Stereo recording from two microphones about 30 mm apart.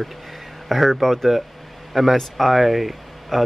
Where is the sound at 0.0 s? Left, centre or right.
Centre.